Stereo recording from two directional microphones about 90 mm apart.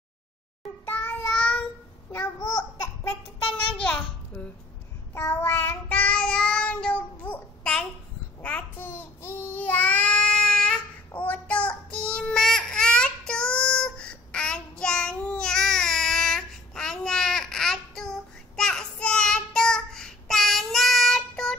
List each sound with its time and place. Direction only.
0.8 s child singing: 20° left (ahead or behind)
2.4 s babbling: 50° left (ahead or behind)
3.0 s a sound: 30° left (ahead or behind)
3.7 s a sound: 10° left (ahead or behind)
5.1 s child singing: 25° left (ahead or behind)
8.4 s babbling: 15° left (ahead or behind)
11.1 s child singing: 20° left (ahead or behind)